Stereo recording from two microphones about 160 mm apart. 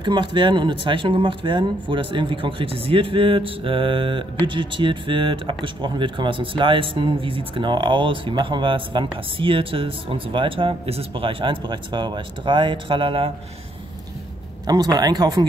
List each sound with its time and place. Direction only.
0.0 s speech: 30° right (ahead or behind)
14.7 s speech: 25° right (ahead or behind)